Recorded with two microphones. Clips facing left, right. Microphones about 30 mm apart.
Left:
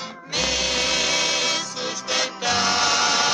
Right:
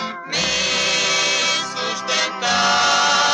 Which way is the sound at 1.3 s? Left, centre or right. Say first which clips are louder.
Right 4 dB; right.